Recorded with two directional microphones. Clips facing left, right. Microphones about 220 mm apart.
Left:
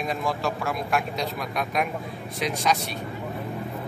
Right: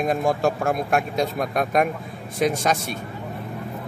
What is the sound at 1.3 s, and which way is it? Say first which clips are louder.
Speech: right 7 dB; 50° right (ahead or behind).